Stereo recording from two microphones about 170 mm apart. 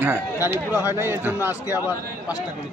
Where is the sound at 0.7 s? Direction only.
20° left (ahead or behind).